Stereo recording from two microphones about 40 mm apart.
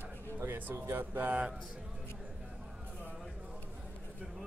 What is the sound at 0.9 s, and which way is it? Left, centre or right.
Speech, right.